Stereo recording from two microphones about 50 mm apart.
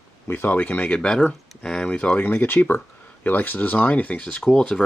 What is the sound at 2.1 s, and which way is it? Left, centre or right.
Speech, left.